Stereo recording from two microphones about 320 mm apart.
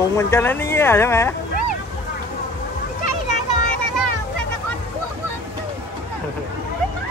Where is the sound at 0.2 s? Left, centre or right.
Centre.